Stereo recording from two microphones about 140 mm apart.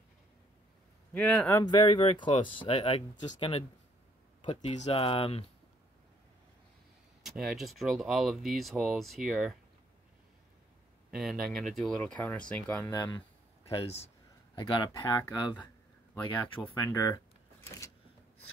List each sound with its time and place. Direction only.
1.1 s speech: 10° left (ahead or behind)
1.6 s speech: 35° left (ahead or behind)
7.2 s speech: centre (ahead or behind)
11.1 s speech: centre (ahead or behind)
13.7 s a sound: 40° left (ahead or behind)
14.9 s speech: 25° left (ahead or behind)
16.6 s speech: 15° left (ahead or behind)
16.9 s speech: 25° left (ahead or behind)
17.6 s vehicle: 20° left (ahead or behind)